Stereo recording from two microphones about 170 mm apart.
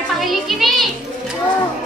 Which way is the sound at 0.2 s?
Centre (ahead or behind).